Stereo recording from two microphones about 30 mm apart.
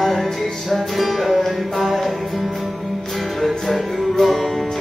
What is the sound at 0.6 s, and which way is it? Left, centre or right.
Music, centre.